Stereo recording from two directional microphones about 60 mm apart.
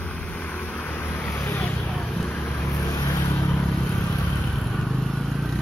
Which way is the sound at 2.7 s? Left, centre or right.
Left.